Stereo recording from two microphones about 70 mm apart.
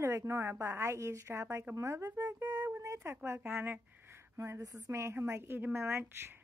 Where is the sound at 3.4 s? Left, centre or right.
Right.